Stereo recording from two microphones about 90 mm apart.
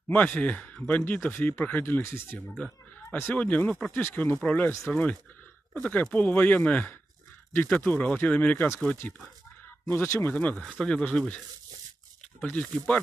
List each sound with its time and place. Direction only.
0.1 s speech: 15° left (ahead or behind)
2.5 s chuckle: 10° left (ahead or behind)
3.2 s speech: 20° left (ahead or behind)
10.8 s speech: 10° left (ahead or behind)